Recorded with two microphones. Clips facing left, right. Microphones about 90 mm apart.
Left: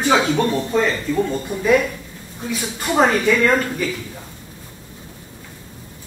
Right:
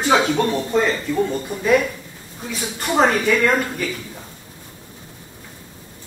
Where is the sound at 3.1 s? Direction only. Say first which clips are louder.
Left 1 dB; 15° right (ahead or behind).